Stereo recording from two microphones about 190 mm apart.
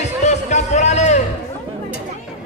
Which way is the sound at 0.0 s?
35° left (ahead or behind).